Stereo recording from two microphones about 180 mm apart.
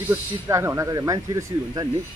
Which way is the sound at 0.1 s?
15° right (ahead or behind).